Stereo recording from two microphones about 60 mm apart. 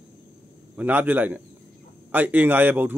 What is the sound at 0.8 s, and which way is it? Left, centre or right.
A man's voice, right.